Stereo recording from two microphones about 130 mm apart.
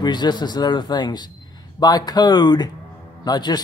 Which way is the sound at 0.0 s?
35° left (ahead or behind).